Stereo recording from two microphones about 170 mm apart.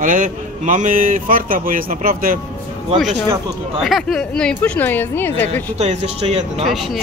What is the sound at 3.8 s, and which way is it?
A woman's voice, centre (ahead or behind).